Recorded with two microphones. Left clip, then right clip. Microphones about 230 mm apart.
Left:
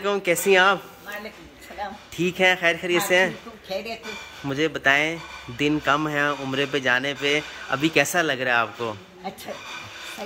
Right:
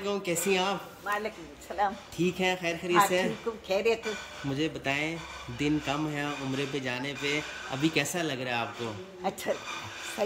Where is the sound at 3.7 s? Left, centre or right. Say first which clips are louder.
Right 3 dB; right.